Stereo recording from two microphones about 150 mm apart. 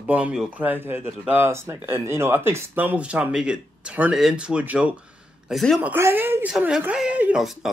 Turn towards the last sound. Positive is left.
turn(degrees=-5)  # may be behind; listen again after turning